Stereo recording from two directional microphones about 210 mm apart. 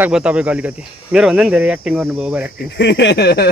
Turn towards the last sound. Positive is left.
turn(degrees=50)  # may be behind; listen again after turning